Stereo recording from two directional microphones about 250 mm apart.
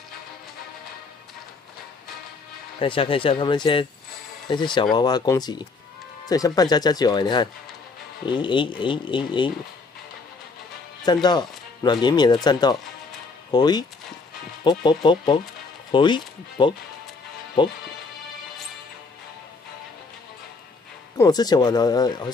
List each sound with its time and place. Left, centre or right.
2.8 s speech: left
11.2 s speech: centre
21.2 s speech: centre